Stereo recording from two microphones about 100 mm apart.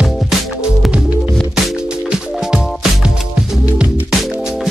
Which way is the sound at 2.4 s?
5° right (ahead or behind).